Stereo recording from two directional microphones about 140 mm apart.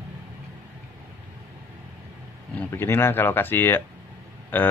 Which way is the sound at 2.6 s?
15° left (ahead or behind).